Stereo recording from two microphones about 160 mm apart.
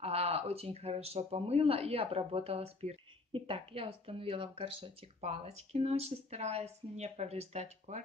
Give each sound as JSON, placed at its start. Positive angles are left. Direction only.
{"t": 0.0, "sound": "speech", "side_deg": -40}